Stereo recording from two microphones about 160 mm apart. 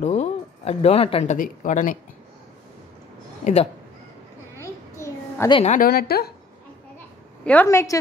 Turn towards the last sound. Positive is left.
turn(degrees=15)  # may be behind; listen again after turning